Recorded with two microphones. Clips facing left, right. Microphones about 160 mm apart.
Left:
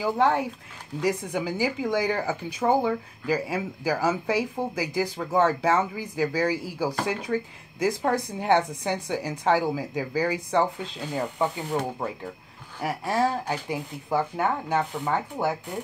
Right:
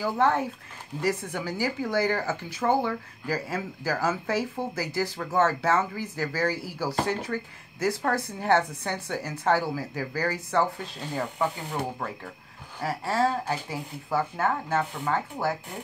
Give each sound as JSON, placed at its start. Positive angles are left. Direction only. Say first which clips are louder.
{"t": 0.0, "sound": "speech", "louder": "left 1 dB", "side_deg": 15}
{"t": 12.8, "sound": "speech", "louder": "left 1 dB", "side_deg": 15}